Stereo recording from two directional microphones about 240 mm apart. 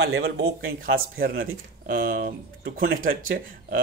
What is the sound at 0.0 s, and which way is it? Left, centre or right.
Speech, right.